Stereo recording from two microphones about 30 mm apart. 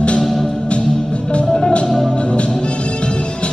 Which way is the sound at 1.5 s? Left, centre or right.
Left.